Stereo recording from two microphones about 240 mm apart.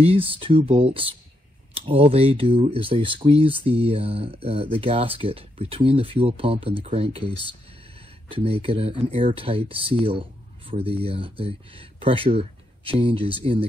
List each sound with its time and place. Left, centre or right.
0.0 s speech: right